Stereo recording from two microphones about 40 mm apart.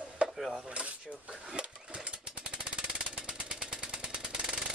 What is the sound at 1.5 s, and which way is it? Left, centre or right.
Jackhammer, right.